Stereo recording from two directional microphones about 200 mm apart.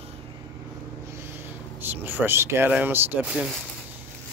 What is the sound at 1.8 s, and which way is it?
Speech, 10° right (ahead or behind).